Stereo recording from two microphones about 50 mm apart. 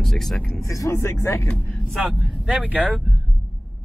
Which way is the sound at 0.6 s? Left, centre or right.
Left.